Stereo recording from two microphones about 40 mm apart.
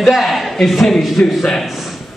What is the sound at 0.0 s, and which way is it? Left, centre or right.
Speech, centre.